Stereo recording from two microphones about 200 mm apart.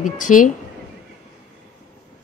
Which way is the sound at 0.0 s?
40° left (ahead or behind).